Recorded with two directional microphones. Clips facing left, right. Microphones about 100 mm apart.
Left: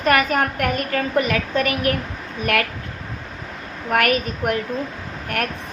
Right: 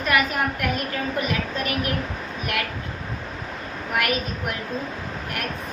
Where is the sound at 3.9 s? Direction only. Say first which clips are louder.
Left 6 dB; 55° left (ahead or behind).